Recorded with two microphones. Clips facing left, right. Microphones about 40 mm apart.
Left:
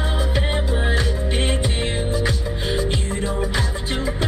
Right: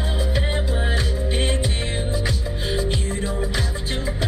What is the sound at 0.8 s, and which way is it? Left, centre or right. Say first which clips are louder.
Music: left 2 dB; left.